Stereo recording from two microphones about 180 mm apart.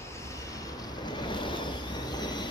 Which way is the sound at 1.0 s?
25° left (ahead or behind).